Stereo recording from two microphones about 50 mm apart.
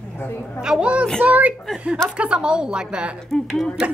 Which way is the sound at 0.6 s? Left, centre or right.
Centre.